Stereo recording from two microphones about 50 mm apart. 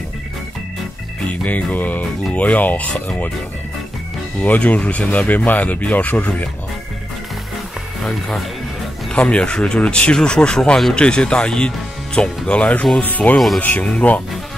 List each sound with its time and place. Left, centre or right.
1.2 s speech: left
4.4 s speech: left
9.1 s speech: left